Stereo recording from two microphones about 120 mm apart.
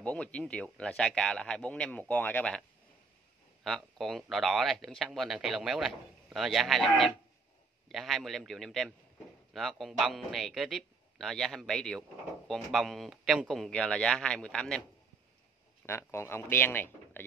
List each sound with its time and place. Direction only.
0.0 s a man's voice: 10° left (ahead or behind)
3.6 s speech: centre (ahead or behind)
15.8 s a man's voice: 20° left (ahead or behind)